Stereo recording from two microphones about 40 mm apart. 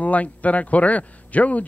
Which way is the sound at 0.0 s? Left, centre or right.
Left.